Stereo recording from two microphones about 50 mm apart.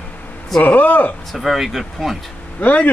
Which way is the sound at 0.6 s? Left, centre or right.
Left.